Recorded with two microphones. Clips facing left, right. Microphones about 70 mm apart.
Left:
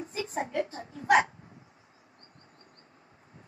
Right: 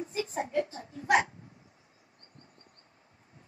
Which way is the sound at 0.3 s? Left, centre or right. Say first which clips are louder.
Left 1 dB; left.